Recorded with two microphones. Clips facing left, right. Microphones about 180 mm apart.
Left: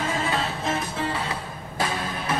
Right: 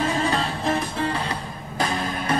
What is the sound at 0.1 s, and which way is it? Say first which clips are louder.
Music: right 3 dB; 5° left (ahead or behind).